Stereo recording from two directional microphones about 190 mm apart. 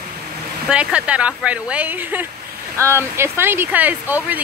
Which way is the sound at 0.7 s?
5° right (ahead or behind).